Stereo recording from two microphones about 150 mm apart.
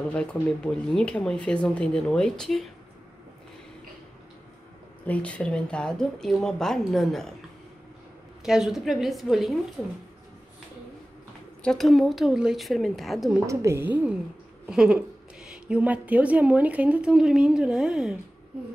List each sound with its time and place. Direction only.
0.1 s speech: 5° left (ahead or behind)
5.0 s speech: 10° left (ahead or behind)
8.5 s speech: 5° right (ahead or behind)
11.6 s speech: centre (ahead or behind)
13.5 s a woman's voice: 20° right (ahead or behind); by 18.1 s 5° right (ahead or behind)